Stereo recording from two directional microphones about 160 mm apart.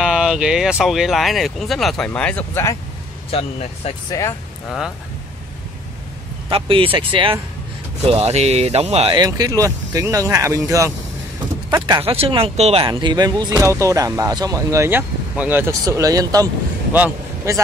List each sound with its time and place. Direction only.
0.0 s speech: 5° right (ahead or behind); by 2.7 s 15° left (ahead or behind)
3.3 s speech: 40° left (ahead or behind)
4.6 s speech: centre (ahead or behind)
6.5 s speech: 35° right (ahead or behind)
9.2 s speech: 25° right (ahead or behind)
11.8 s speech: 35° right (ahead or behind)
16.9 s a man's voice: 10° right (ahead or behind)